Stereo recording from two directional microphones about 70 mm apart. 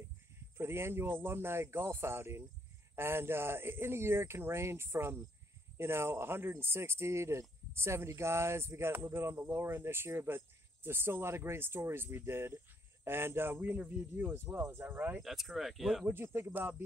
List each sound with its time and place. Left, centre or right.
0.6 s speech: right
15.2 s speech: centre
16.3 s speech: right